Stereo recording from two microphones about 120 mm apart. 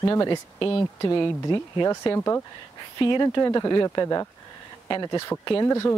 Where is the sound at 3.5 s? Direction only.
30° left (ahead or behind).